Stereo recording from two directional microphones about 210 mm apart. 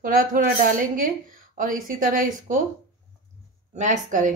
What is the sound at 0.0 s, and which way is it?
A woman's voice, 40° right (ahead or behind).